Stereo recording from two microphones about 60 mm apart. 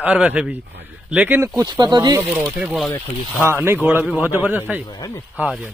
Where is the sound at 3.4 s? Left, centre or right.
Right.